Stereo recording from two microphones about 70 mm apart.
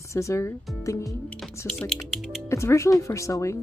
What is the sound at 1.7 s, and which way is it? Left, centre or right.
Speech, centre.